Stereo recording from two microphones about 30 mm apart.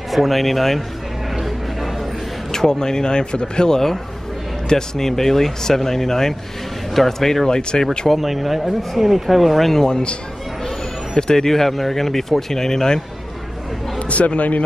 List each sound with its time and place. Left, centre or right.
0.1 s speech: centre
2.5 s speech: centre
8.2 s speech: centre
11.1 s speech: left
13.9 s speech: left